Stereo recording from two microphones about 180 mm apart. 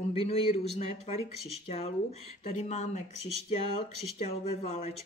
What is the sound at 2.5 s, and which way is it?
Speech, 40° left (ahead or behind).